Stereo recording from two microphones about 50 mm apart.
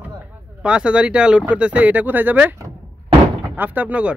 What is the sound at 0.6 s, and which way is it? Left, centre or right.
Speech, right.